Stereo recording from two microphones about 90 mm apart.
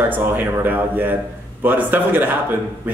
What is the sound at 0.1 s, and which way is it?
A man's voice, 20° right (ahead or behind).